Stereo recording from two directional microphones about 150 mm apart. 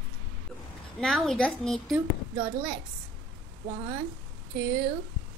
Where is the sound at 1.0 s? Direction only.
Centre (ahead or behind).